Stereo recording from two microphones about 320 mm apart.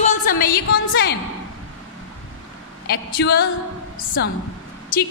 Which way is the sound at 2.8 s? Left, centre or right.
Left.